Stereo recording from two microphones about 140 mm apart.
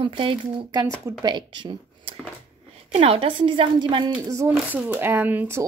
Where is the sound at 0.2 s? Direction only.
35° right (ahead or behind).